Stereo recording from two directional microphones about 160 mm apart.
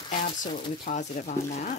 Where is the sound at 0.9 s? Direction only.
50° left (ahead or behind).